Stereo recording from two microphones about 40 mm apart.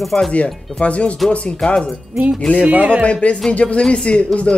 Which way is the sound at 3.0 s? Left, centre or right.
Left.